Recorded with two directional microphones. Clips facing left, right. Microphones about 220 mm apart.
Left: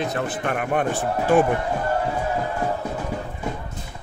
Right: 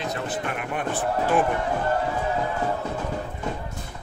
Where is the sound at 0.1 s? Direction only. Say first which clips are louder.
Left 4 dB; 50° left (ahead or behind).